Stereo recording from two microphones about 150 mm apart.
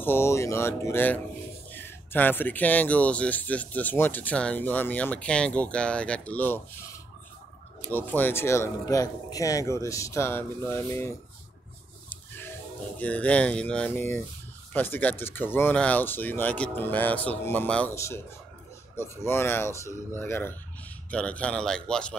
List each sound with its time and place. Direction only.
0.0 s speech: 15° left (ahead or behind)
7.9 s speech: 15° left (ahead or behind)